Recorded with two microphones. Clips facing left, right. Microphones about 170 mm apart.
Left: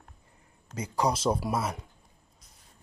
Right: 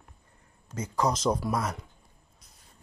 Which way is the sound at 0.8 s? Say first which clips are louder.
Even; 10° left (ahead or behind).